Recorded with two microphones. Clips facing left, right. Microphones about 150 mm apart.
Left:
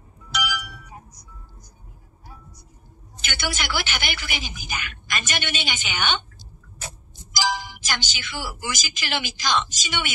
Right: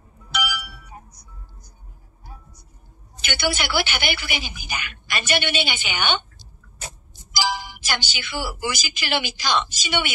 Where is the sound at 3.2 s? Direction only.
45° left (ahead or behind).